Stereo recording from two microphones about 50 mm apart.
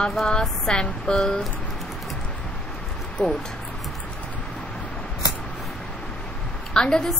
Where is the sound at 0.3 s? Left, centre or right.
Centre.